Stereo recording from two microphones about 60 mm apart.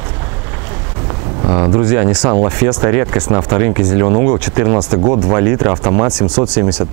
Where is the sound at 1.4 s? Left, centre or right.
Right.